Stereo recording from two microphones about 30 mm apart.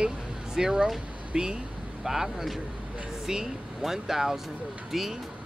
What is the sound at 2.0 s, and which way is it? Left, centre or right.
Speech, centre.